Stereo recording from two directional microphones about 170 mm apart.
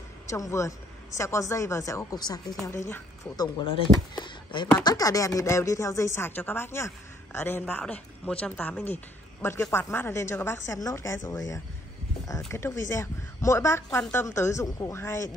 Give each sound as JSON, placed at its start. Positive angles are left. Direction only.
{"t": 0.3, "sound": "a woman's voice", "side_deg": 15}